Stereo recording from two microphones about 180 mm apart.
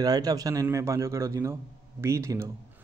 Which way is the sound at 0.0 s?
20° right (ahead or behind).